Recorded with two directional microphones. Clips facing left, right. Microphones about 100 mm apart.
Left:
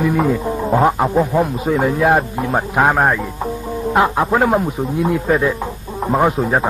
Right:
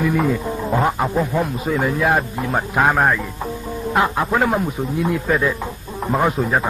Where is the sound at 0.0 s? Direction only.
25° left (ahead or behind).